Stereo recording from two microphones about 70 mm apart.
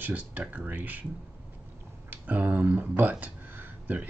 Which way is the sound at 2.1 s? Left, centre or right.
Right.